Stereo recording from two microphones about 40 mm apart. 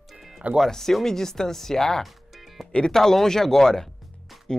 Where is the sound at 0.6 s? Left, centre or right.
Centre.